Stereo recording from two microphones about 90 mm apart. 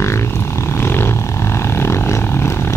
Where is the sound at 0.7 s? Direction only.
25° left (ahead or behind).